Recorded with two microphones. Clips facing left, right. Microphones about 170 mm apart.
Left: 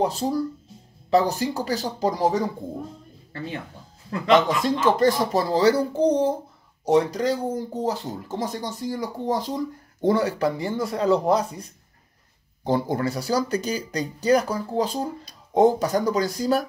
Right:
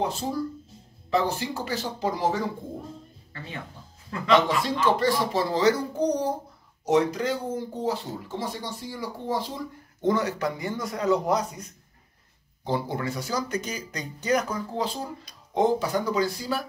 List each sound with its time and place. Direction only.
1.1 s speech: 40° left (ahead or behind)
4.3 s speech: 45° left (ahead or behind)
10.0 s speech: 30° left (ahead or behind)
12.6 s speech: 45° left (ahead or behind)